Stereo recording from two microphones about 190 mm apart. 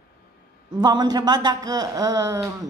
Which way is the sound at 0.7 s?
20° right (ahead or behind).